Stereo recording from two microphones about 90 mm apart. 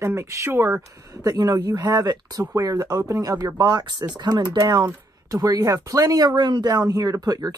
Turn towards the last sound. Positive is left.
turn(degrees=-45)  # may be behind; listen again after turning